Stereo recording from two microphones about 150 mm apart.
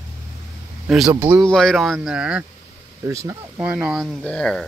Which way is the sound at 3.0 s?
20° right (ahead or behind).